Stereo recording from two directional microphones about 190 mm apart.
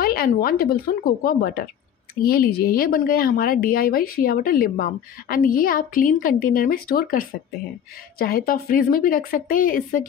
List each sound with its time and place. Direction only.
0.0 s a woman's voice: 50° left (ahead or behind)